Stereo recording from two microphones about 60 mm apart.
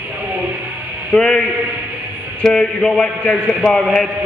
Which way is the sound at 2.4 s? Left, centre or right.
Centre.